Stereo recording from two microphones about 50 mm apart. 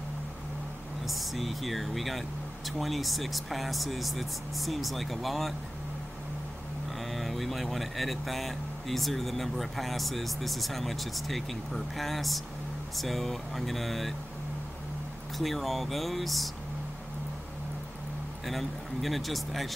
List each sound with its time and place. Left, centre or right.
1.0 s speech: centre
7.1 s speech: centre
15.3 s speech: centre
18.4 s speech: centre